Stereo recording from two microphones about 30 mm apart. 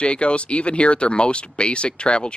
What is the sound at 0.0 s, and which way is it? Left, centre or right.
Speech, left.